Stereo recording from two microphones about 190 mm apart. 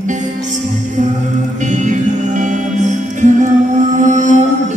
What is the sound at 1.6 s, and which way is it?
Music, 40° right (ahead or behind).